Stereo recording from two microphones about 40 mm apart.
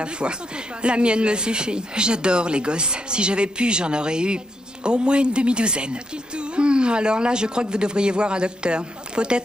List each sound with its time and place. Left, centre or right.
0.8 s a woman's voice: right